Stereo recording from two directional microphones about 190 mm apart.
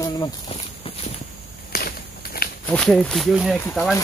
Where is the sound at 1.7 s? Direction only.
55° left (ahead or behind).